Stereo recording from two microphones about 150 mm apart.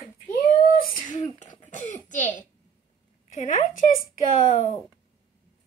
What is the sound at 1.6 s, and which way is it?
Speech, 55° left (ahead or behind).